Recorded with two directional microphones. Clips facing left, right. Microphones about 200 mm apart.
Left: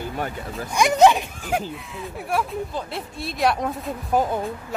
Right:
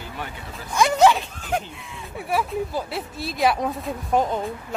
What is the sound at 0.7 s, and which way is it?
Speech, 15° left (ahead or behind).